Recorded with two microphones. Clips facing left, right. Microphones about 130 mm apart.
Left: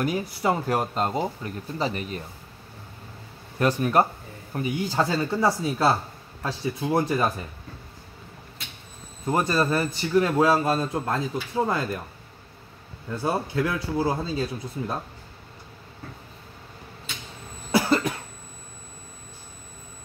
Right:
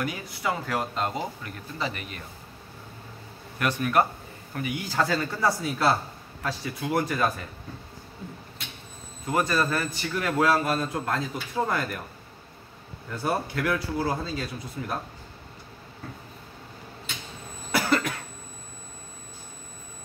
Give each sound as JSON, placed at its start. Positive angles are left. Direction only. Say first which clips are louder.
{"t": 0.0, "sound": "speech", "louder": "left 5 dB", "side_deg": 35}
{"t": 3.5, "sound": "speech", "louder": "left 3 dB", "side_deg": 30}
{"t": 9.2, "sound": "speech", "louder": "left 2 dB", "side_deg": 25}
{"t": 13.1, "sound": "speech", "louder": "left 2 dB", "side_deg": 25}
{"t": 17.6, "sound": "cough", "louder": "left 3 dB", "side_deg": 30}